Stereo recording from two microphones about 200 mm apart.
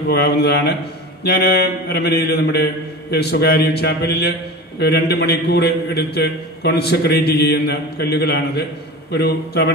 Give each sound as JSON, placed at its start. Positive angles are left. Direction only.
{"t": 0.1, "sound": "a man's voice", "side_deg": 55}